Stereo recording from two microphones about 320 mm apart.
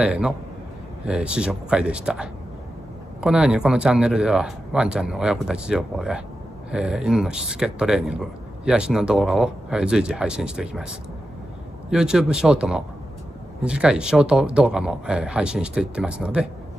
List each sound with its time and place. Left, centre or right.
0.0 s speech: centre